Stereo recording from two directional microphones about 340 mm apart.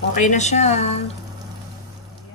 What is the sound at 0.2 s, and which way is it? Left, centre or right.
Speech, left.